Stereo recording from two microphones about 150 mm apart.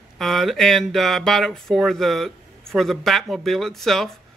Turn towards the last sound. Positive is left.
turn(degrees=0)  # may be behind; listen again after turning